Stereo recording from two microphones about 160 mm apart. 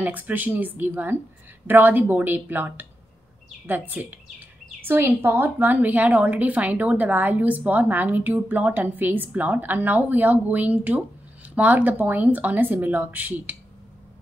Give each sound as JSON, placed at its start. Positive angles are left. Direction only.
{"t": 0.0, "sound": "a woman's voice", "side_deg": -10}